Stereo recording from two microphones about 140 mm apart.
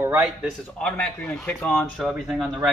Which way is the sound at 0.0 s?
20° right (ahead or behind).